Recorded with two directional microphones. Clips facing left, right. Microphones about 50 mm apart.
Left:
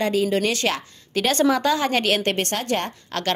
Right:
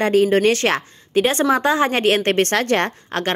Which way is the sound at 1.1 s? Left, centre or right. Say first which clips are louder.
Right 3 dB; right.